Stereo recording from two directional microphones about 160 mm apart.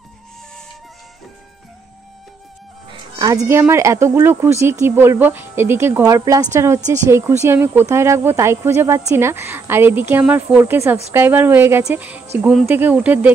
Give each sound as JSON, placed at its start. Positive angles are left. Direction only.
{"t": 2.9, "sound": "speech", "side_deg": -25}